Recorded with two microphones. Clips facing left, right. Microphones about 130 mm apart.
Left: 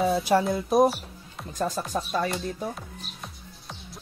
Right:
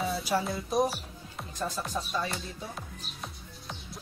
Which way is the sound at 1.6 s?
50° left (ahead or behind).